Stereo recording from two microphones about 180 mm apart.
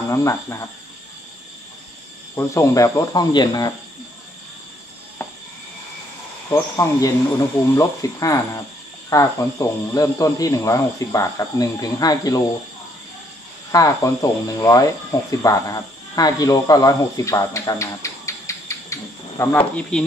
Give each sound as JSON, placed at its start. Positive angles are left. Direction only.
{"t": 0.1, "sound": "speech", "side_deg": 15}
{"t": 2.3, "sound": "speech", "side_deg": 15}
{"t": 6.5, "sound": "speech", "side_deg": 20}
{"t": 13.7, "sound": "speech", "side_deg": 20}